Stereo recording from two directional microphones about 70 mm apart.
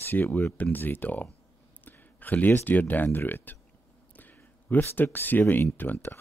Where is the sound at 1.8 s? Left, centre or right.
Left.